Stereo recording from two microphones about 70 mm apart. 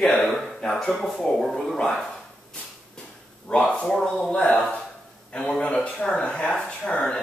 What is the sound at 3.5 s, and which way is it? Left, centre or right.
Speech, centre.